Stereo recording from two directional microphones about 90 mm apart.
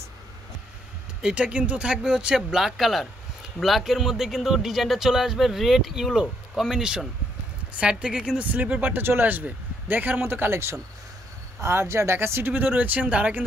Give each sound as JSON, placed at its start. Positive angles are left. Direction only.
{"t": 1.2, "sound": "speech", "side_deg": -15}